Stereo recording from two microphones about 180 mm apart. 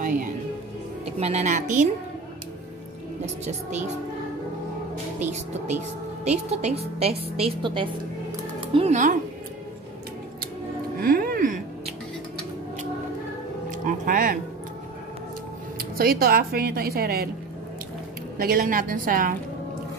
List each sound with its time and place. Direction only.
1.2 s a woman's voice: 40° right (ahead or behind)
3.4 s a woman's voice: 40° right (ahead or behind)
5.2 s a woman's voice: 40° right (ahead or behind)
8.7 s a woman's voice: 40° right (ahead or behind)
11.0 s music: 55° right (ahead or behind)
13.7 s a sound: 50° right (ahead or behind)
15.8 s speech: 55° right (ahead or behind)
18.4 s a woman's voice: 55° right (ahead or behind)